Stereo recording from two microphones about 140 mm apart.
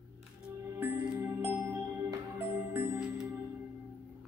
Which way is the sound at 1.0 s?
15° right (ahead or behind).